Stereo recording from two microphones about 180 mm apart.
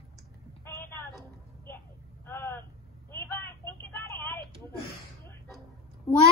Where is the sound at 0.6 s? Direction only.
10° left (ahead or behind).